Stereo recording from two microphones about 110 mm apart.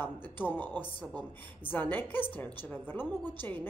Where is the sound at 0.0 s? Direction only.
15° left (ahead or behind).